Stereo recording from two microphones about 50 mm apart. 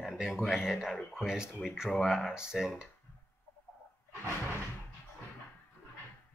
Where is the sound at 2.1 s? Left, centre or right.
Centre.